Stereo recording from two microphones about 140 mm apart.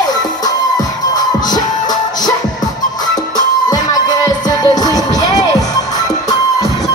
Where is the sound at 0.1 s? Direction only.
30° left (ahead or behind).